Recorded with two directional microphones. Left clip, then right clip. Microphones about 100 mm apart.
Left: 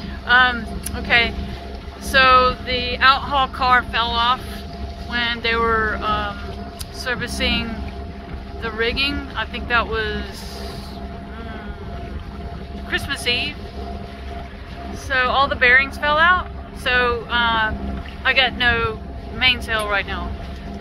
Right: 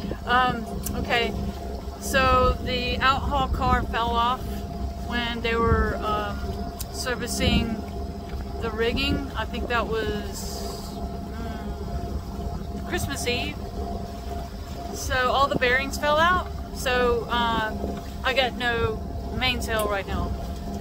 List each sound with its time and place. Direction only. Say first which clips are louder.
0.3 s speech: left 7 dB; 30° right (ahead or behind)
2.6 s a sound: left 7 dB; 40° right (ahead or behind)
3.3 s speech: left 7 dB; 15° right (ahead or behind)
5.6 s speech: left 4 dB; 5° right (ahead or behind)
5.9 s speech: left 5 dB; 20° right (ahead or behind)
8.6 s speech: left 5 dB; 25° right (ahead or behind)
12.9 s speech: left 7 dB; 15° right (ahead or behind)
15.0 s speech: left 4 dB; 35° right (ahead or behind)